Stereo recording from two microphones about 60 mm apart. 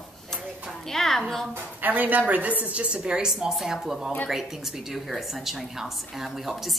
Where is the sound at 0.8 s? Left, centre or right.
Centre.